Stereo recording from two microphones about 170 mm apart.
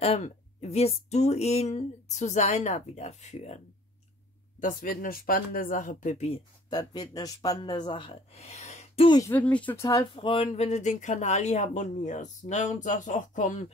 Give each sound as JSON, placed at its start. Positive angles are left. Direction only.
{"t": 0.0, "sound": "speech", "side_deg": 35}
{"t": 4.6, "sound": "speech", "side_deg": 55}
{"t": 6.7, "sound": "speech", "side_deg": 25}
{"t": 9.3, "sound": "speech", "side_deg": 10}
{"t": 10.1, "sound": "speech", "side_deg": 35}